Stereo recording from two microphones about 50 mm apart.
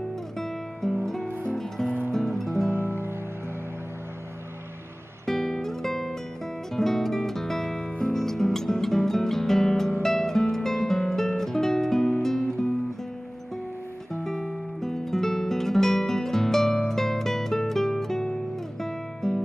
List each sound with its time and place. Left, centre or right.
0.8 s music: centre
2.7 s music: right
5.2 s guitar: centre
6.7 s music: centre
14.2 s music: centre